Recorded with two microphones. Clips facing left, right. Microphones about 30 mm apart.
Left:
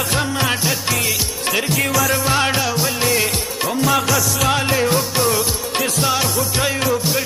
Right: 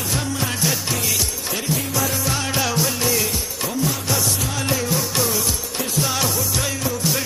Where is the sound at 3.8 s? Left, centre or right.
Left.